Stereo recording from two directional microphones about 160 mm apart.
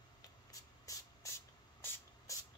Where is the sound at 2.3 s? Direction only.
20° left (ahead or behind).